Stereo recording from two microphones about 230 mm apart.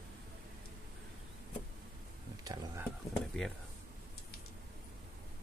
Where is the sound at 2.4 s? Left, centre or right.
Centre.